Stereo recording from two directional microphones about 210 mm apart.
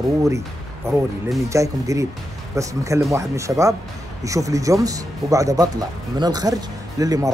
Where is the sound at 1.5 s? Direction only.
15° right (ahead or behind).